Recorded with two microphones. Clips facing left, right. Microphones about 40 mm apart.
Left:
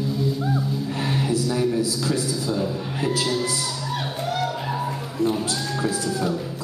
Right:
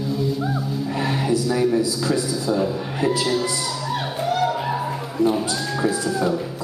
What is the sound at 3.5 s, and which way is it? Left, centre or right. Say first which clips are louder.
Music: right 2 dB; centre.